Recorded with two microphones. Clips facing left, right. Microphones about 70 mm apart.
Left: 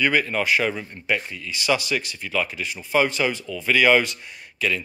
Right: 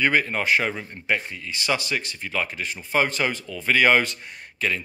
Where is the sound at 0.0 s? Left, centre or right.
Right.